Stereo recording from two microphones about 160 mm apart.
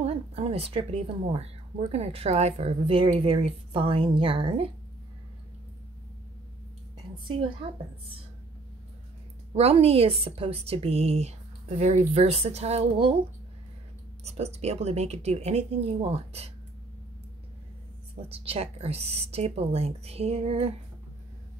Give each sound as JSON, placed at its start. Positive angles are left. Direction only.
{"t": 0.0, "sound": "a woman's voice", "side_deg": -40}
{"t": 7.6, "sound": "a woman's voice", "side_deg": -35}
{"t": 9.5, "sound": "a woman's voice", "side_deg": -40}
{"t": 14.2, "sound": "a woman's voice", "side_deg": -40}
{"t": 18.3, "sound": "a woman's voice", "side_deg": -40}